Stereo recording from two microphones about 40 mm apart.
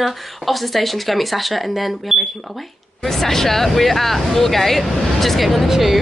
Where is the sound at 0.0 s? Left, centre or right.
Centre.